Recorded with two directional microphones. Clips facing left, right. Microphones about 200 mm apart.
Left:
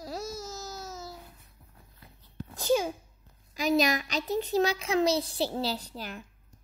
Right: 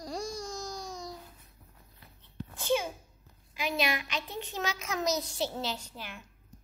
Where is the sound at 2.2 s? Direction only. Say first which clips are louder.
Left 1 dB; 40° left (ahead or behind).